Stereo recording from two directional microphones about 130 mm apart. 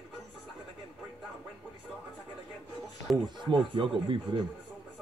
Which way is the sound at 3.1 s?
Centre (ahead or behind).